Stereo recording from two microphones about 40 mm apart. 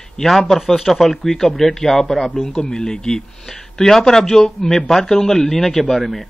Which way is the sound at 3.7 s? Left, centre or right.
Centre.